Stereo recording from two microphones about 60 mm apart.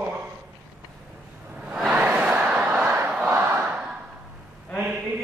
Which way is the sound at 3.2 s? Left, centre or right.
Right.